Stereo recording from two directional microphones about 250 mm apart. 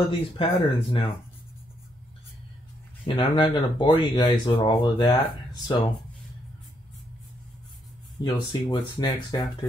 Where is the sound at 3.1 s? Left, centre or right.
Centre.